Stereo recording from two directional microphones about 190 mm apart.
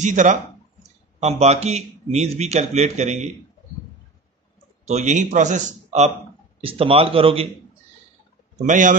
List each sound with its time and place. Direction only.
0.0 s speech: 40° right (ahead or behind)
4.8 s speech: 40° right (ahead or behind)
8.6 s speech: 40° right (ahead or behind)